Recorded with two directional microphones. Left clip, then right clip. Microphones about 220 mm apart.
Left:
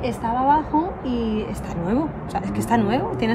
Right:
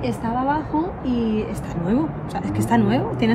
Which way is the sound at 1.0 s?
30° left (ahead or behind).